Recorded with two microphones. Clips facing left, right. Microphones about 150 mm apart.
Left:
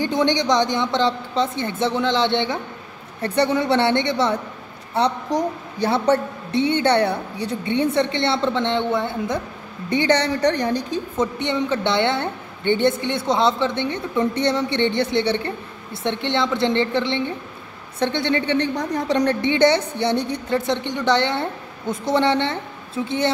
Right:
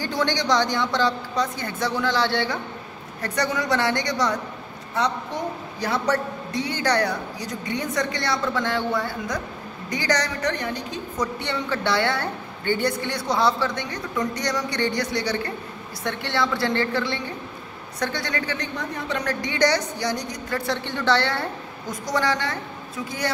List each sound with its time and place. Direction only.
0.0 s a woman's voice: 20° left (ahead or behind)
11.3 s a woman's voice: 20° left (ahead or behind)